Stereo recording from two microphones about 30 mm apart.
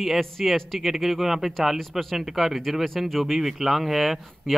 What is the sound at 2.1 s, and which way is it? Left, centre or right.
A man's voice, centre.